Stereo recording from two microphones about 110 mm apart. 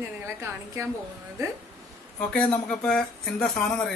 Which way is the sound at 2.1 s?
10° left (ahead or behind).